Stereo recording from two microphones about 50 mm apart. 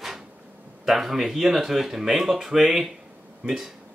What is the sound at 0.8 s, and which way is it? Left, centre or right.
Speech, centre.